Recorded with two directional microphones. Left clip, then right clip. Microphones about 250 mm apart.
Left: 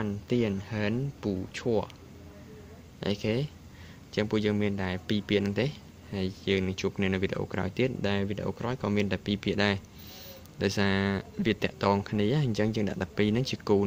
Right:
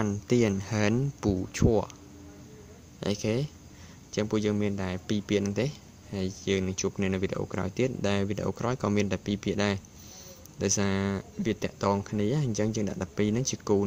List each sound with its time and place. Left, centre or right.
0.0 s a man's voice: centre
3.0 s a man's voice: centre